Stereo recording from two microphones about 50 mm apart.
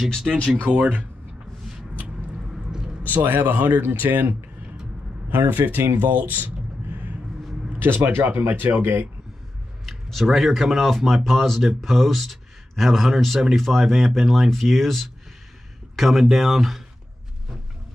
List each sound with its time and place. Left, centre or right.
0.3 s speech: centre
0.7 s speech: right
2.0 s a sound: centre
3.1 s a man's voice: right
5.3 s speech: right
5.9 s a sound: right
7.8 s a man's voice: right
10.2 s a man's voice: centre